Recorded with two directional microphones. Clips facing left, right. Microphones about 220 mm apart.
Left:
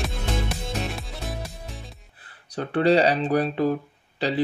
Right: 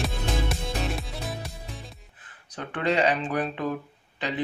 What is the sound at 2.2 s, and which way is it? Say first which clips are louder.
Speech: left 7 dB; 35° left (ahead or behind).